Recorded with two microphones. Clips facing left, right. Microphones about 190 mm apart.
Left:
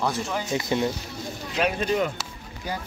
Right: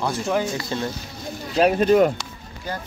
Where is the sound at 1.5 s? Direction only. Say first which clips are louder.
Right 8 dB; 40° right (ahead or behind).